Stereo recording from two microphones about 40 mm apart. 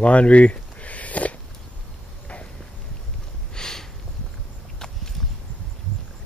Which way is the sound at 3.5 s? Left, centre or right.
Centre.